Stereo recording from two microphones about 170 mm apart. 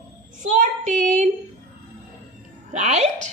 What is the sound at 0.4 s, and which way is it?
Child singing, 50° right (ahead or behind).